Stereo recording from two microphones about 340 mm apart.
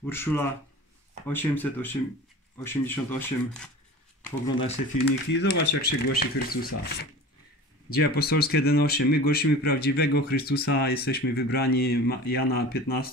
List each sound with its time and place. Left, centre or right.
0.0 s speech: centre
5.0 s speech: left
7.9 s speech: left